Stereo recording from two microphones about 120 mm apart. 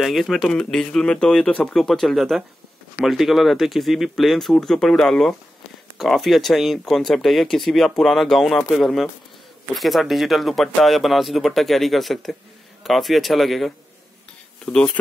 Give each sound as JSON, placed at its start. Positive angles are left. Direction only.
{"t": 0.0, "sound": "speech", "side_deg": 0}